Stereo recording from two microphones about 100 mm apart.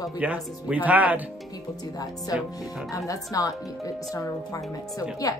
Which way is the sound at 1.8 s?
40° left (ahead or behind).